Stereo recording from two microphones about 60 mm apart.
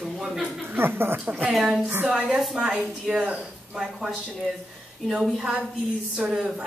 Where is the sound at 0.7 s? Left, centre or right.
Right.